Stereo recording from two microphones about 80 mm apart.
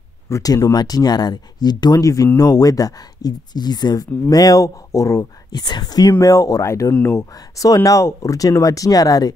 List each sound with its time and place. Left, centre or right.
0.3 s speech: left
2.3 s speech: left
5.6 s speech: left
6.2 s speech: left
7.3 s speech: left